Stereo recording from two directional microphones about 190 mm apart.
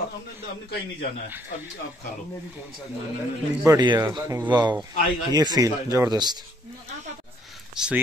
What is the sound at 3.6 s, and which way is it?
Speech, 20° right (ahead or behind).